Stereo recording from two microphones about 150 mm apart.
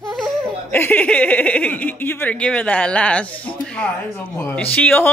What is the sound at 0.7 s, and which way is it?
Speech, 10° left (ahead or behind).